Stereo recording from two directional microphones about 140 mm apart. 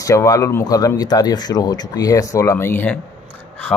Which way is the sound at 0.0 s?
25° left (ahead or behind).